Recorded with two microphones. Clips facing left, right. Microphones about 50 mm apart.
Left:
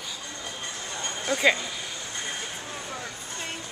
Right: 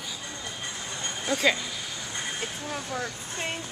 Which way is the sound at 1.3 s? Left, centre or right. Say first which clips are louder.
Left 2 dB; centre.